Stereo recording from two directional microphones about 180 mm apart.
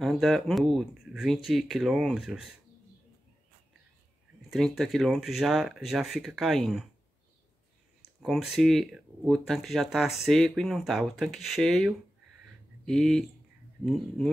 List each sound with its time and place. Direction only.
0.0 s speech: centre (ahead or behind)
4.5 s speech: centre (ahead or behind)
8.2 s speech: centre (ahead or behind)